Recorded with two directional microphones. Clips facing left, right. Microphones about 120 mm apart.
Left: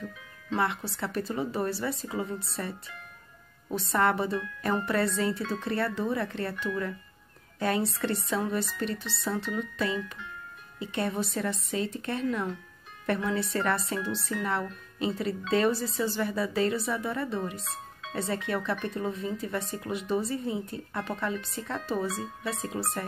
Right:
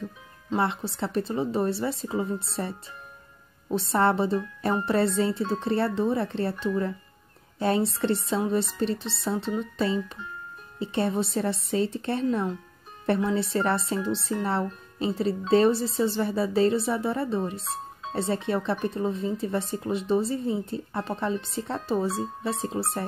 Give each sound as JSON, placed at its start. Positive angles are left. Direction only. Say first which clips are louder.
{"t": 0.5, "sound": "speech", "louder": "right 3 dB", "side_deg": -25}
{"t": 3.6, "sound": "speech", "louder": "right 3 dB", "side_deg": -25}